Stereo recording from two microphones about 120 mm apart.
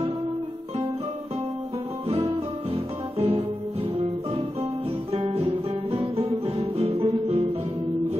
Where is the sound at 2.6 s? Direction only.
60° right (ahead or behind).